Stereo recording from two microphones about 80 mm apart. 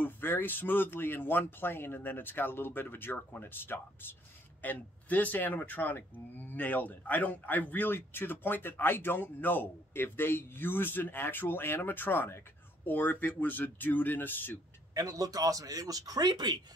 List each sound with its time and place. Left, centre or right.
0.0 s speech: left
15.0 s speech: right